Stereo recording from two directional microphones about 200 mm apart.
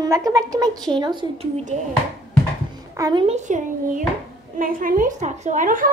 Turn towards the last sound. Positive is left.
turn(degrees=-40)  # may be behind; listen again after turning